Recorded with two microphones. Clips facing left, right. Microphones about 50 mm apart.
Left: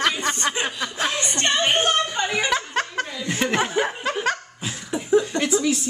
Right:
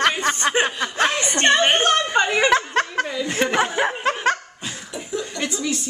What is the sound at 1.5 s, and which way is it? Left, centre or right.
Speech, right.